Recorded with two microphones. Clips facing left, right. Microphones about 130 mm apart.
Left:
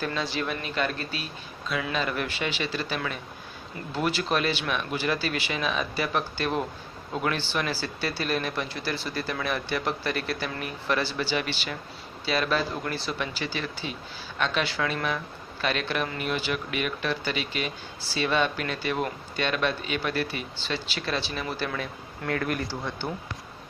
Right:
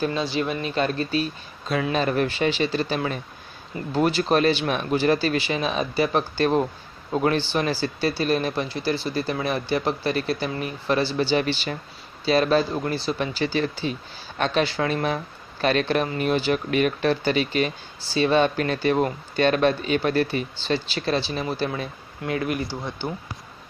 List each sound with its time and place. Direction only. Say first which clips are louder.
0.0 s speech: right 5 dB; 20° right (ahead or behind)
22.2 s speech: right 3 dB; 15° right (ahead or behind)